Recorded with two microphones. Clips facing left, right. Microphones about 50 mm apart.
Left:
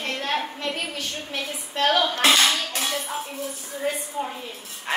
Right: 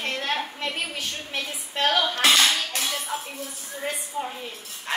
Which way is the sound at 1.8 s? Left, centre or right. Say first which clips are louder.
Left 2 dB; centre.